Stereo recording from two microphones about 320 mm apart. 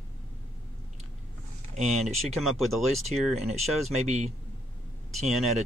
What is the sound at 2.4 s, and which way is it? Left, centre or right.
Speech, centre.